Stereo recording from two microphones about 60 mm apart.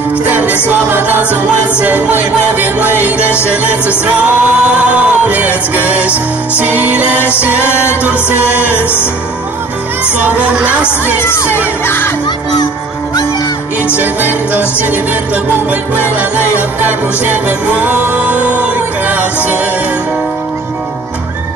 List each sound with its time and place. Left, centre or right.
0.3 s music: right
10.0 s music: right
11.1 s children shouting: left
11.8 s speech: left
13.9 s music: right